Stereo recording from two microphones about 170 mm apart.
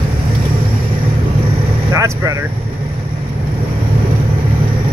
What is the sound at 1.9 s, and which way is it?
Vehicle, 20° right (ahead or behind).